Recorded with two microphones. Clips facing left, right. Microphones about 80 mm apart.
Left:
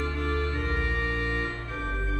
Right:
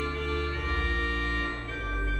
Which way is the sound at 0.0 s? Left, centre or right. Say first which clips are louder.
Left 2 dB; left.